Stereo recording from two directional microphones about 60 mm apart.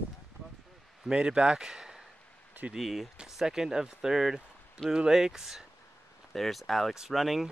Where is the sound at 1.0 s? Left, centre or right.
Centre.